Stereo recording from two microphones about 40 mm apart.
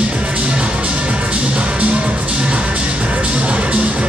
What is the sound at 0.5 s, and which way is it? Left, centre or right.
Music, right.